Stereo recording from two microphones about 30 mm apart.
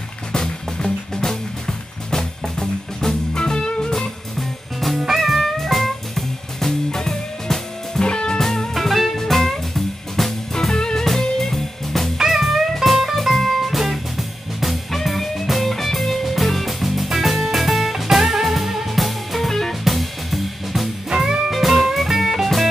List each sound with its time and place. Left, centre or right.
0.3 s music: left
3.3 s music: left
4.4 s music: centre
6.9 s music: left
8.0 s music: left
8.4 s music: centre
8.7 s music: centre
10.5 s music: centre
11.1 s music: centre
21.1 s music: right
21.5 s music: centre